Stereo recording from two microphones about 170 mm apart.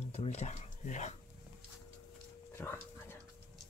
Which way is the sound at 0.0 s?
40° left (ahead or behind).